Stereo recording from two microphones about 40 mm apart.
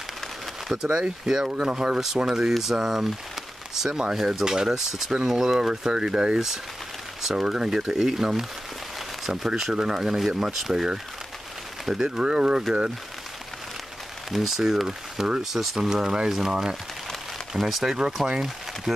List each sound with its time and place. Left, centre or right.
0.8 s speech: right
9.6 s speech: centre
14.6 s speech: centre